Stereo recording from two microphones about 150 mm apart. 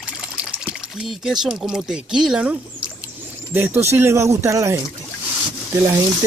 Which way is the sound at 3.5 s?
15° right (ahead or behind).